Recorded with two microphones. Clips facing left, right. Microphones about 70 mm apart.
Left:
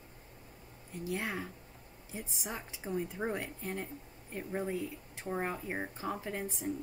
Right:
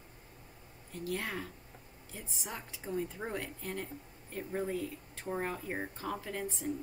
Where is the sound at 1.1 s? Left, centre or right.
Centre.